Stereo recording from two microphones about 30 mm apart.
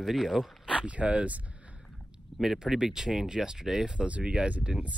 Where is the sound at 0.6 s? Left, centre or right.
Right.